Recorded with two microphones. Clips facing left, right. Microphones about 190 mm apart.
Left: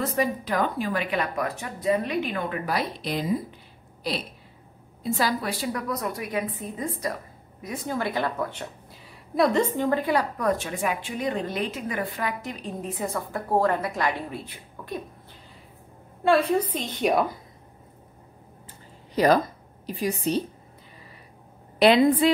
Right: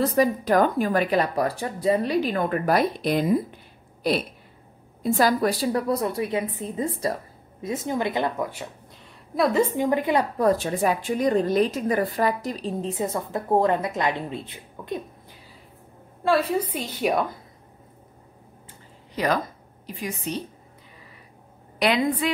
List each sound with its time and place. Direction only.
0.0 s speech: 35° right (ahead or behind); by 3.3 s 55° right (ahead or behind)
5.0 s a woman's voice: 50° right (ahead or behind); by 8.6 s 15° right (ahead or behind)
9.3 s a woman's voice: centre (ahead or behind); by 15.0 s 20° right (ahead or behind)
16.3 s a woman's voice: 5° right (ahead or behind)
19.1 s a woman's voice: 35° left (ahead or behind)
21.7 s a woman's voice: 30° left (ahead or behind)